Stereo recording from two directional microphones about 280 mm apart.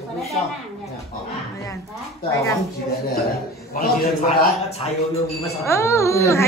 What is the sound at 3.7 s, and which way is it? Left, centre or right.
Speech, left.